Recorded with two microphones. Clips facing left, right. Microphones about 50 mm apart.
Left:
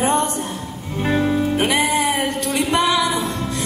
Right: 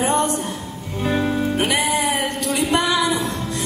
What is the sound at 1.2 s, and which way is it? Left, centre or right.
Music, centre.